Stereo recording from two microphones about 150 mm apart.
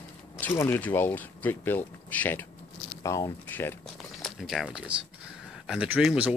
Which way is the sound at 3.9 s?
Centre (ahead or behind).